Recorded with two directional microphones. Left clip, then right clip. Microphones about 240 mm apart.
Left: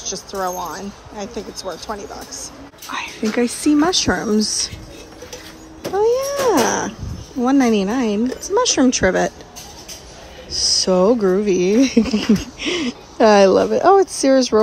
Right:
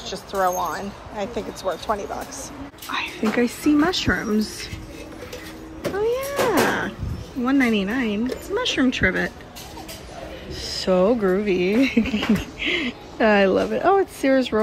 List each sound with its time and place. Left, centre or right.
0.0 s a woman's voice: centre
5.9 s speech: centre
6.7 s music: centre
7.4 s a woman's voice: centre
10.5 s speech: centre